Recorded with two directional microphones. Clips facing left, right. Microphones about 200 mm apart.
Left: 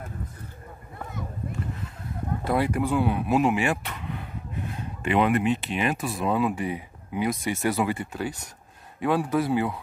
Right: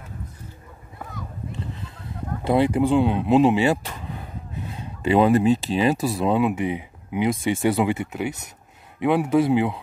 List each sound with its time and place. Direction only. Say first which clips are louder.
2.4 s speech: right 6 dB; 25° right (ahead or behind)